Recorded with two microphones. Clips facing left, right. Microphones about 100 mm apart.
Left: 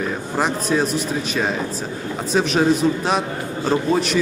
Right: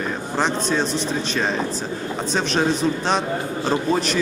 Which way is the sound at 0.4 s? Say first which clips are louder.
Left 2 dB; 5° left (ahead or behind).